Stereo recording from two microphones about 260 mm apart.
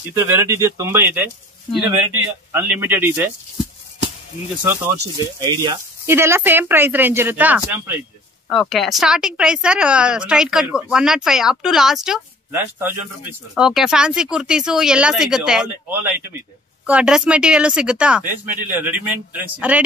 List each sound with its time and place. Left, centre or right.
0.2 s speech: centre
5.0 s speech: centre